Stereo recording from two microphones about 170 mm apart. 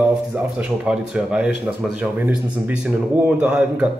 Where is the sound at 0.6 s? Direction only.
5° right (ahead or behind).